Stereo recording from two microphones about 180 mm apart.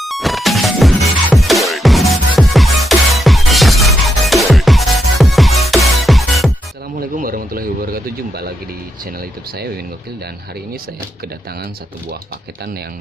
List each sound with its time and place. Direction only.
0.0 s music: centre (ahead or behind)
7.0 s a sound: 50° right (ahead or behind)
9.0 s speech: 55° right (ahead or behind)